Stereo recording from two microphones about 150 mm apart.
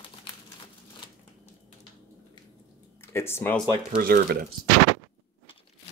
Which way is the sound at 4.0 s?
75° right (ahead or behind).